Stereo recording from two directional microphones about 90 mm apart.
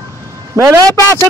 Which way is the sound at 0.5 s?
40° right (ahead or behind).